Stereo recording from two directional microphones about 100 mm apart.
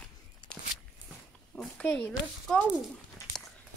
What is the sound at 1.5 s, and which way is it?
Speech, 10° left (ahead or behind).